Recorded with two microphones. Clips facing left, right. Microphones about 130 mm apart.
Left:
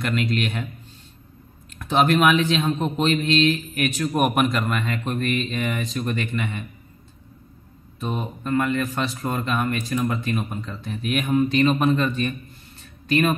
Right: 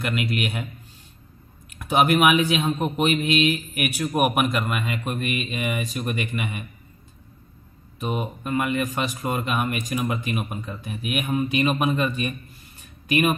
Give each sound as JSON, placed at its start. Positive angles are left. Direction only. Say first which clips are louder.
{"t": 0.0, "sound": "speech", "louder": "left 2 dB", "side_deg": -5}
{"t": 1.7, "sound": "speech", "louder": "even", "side_deg": -10}
{"t": 8.0, "sound": "speech", "louder": "right 1 dB", "side_deg": -15}